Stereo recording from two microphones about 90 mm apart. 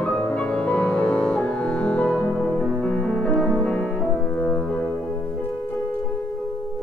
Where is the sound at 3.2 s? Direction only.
10° left (ahead or behind).